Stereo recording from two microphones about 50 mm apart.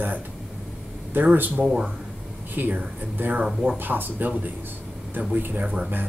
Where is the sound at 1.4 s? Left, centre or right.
Right.